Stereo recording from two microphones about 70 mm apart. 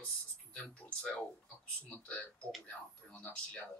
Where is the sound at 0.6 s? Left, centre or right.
Centre.